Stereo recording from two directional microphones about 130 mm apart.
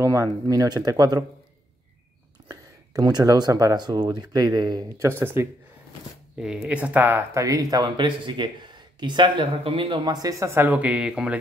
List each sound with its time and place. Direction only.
0.0 s speech: 25° right (ahead or behind)
2.4 s speech: 30° right (ahead or behind)
5.0 s speech: 20° right (ahead or behind)
6.3 s speech: 5° right (ahead or behind)